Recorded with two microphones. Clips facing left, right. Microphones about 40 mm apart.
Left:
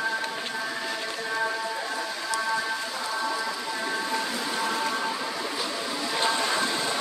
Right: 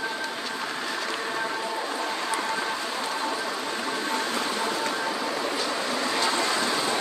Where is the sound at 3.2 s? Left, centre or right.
Right.